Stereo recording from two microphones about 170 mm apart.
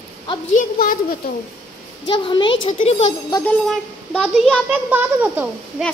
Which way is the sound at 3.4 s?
5° left (ahead or behind).